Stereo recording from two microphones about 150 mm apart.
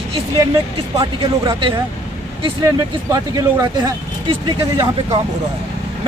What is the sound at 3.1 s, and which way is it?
Speech, 25° right (ahead or behind).